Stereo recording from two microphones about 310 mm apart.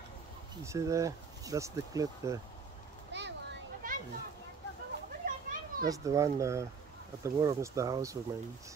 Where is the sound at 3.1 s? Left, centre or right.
Right.